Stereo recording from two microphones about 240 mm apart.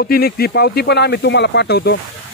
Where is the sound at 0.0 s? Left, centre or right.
Left.